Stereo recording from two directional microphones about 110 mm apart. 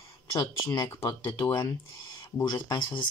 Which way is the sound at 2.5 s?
45° left (ahead or behind).